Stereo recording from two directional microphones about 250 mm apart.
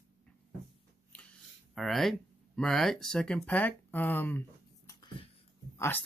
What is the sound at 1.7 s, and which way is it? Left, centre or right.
Speech, centre.